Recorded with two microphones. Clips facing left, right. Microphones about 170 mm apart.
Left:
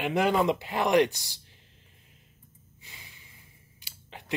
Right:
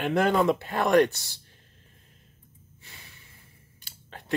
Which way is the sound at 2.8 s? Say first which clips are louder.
Right 1 dB; 15° left (ahead or behind).